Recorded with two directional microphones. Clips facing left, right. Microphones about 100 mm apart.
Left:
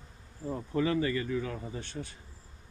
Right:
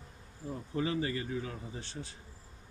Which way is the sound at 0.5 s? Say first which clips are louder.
Left 4 dB; 60° left (ahead or behind).